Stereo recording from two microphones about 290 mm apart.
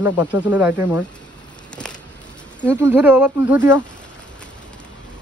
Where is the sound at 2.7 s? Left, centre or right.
Centre.